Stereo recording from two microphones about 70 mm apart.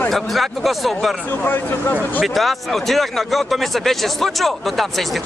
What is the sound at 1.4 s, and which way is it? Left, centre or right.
Speech, left.